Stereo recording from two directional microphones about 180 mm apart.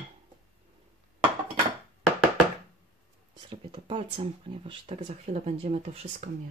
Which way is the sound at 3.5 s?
30° right (ahead or behind).